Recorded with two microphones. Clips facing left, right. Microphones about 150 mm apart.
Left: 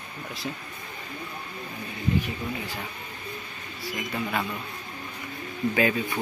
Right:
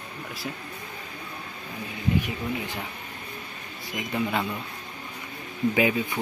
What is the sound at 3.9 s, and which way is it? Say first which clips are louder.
Speech: right 2 dB; 20° right (ahead or behind).